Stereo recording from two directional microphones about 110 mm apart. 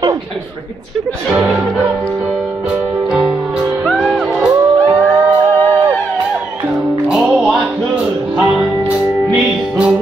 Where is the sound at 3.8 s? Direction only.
5° left (ahead or behind).